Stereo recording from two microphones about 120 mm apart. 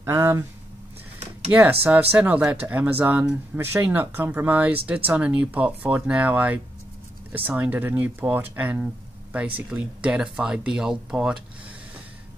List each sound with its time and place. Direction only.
0.0 s speech: 25° right (ahead or behind)
1.5 s speech: 15° right (ahead or behind)